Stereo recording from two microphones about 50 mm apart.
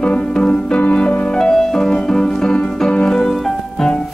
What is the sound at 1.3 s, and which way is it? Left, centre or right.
Music, centre.